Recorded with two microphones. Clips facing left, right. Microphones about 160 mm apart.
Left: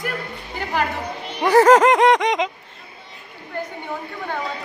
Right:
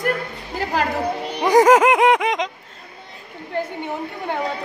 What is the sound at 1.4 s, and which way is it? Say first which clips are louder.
A man's voice: even; 10° right (ahead or behind).